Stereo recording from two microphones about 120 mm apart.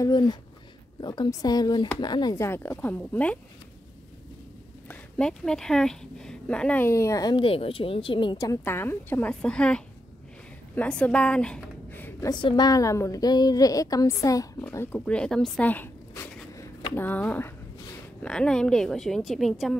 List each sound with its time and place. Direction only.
0.0 s a woman's voice: 35° left (ahead or behind)
2.3 s speech: 20° left (ahead or behind)
4.8 s a woman's voice: 10° left (ahead or behind)
6.9 s a woman's voice: 25° left (ahead or behind)
7.3 s speech: 50° left (ahead or behind)
8.4 s a woman's voice: 25° left (ahead or behind)
9.3 s speech: 10° left (ahead or behind)
12.3 s a woman's voice: 40° left (ahead or behind); by 15.7 s 5° left (ahead or behind)
15.7 s zipper: 15° left (ahead or behind)
16.9 s a woman's voice: 15° left (ahead or behind); by 19.8 s centre (ahead or behind)